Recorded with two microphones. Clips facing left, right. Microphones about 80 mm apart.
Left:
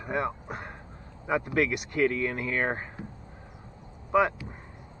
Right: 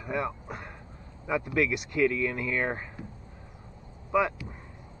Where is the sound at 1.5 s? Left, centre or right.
Left.